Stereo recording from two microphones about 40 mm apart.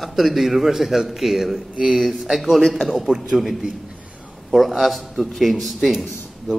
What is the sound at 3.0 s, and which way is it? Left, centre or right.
A man's voice, centre.